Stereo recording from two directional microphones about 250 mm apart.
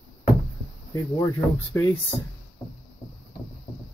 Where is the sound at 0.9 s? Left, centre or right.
Centre.